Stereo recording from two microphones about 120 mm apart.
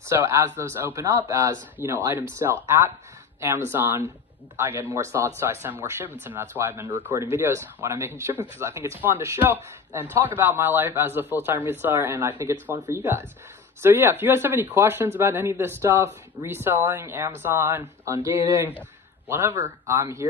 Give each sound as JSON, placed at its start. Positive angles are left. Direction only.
{"t": 0.1, "sound": "a man's voice", "side_deg": -25}